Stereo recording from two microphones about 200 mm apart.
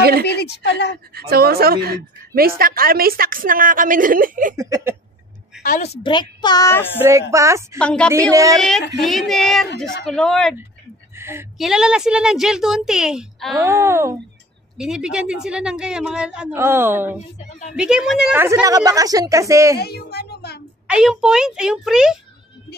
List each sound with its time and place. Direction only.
0.3 s a woman's voice: 55° left (ahead or behind)
1.1 s a woman's voice: 50° right (ahead or behind)
4.6 s a woman's voice: 15° right (ahead or behind)
5.6 s a woman's voice: 40° left (ahead or behind); by 6.9 s 15° left (ahead or behind)
7.0 s a woman's voice: 15° right (ahead or behind)
7.8 s a woman's voice: 5° left (ahead or behind)
8.3 s a woman's voice: 15° right (ahead or behind)
8.5 s a woman's voice: centre (ahead or behind)
11.1 s a sound: 10° right (ahead or behind)
11.5 s a woman's voice: centre (ahead or behind)
13.6 s a woman's voice: 15° right (ahead or behind)
19.8 s a woman's voice: 55° left (ahead or behind)
20.8 s a woman's voice: 5° right (ahead or behind)